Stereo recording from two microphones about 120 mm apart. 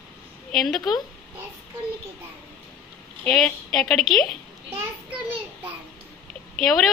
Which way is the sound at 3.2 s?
5° left (ahead or behind).